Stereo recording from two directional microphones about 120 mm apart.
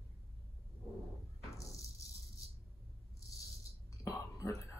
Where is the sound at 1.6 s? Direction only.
25° left (ahead or behind).